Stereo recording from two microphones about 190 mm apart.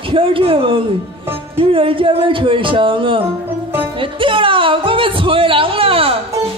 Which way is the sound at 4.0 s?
25° right (ahead or behind).